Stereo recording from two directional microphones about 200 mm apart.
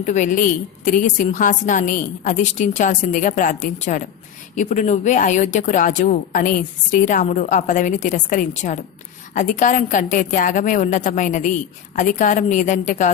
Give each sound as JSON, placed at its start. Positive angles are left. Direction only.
{"t": 0.0, "sound": "speech", "side_deg": 40}